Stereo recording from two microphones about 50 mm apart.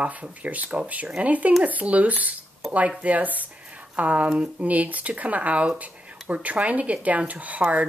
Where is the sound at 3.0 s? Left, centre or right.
Right.